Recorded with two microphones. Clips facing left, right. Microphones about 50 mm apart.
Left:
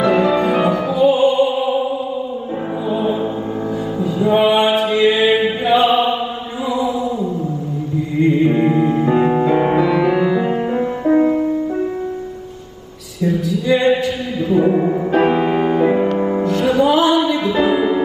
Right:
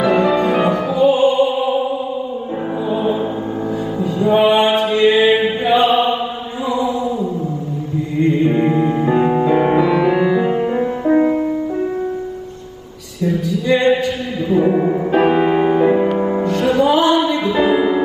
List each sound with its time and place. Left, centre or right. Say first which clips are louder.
0.0 s music: even; centre
2.9 s music: even; centre
8.2 s music: left 1 dB; centre
11.1 s music: left 1 dB; right
13.2 s music: even; centre